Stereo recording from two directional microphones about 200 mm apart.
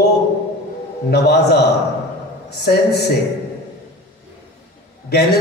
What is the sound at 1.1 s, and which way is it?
A man's voice, 55° left (ahead or behind).